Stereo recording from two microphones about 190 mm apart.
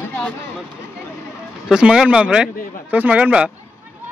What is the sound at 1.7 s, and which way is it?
A man's voice, 5° right (ahead or behind).